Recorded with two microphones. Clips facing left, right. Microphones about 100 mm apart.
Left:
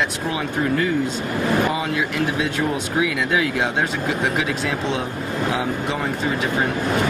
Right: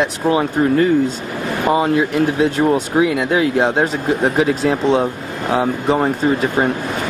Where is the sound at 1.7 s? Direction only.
35° right (ahead or behind).